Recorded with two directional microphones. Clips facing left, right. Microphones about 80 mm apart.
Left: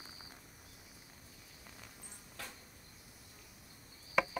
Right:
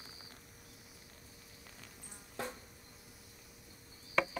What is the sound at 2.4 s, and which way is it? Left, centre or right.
Insect, right.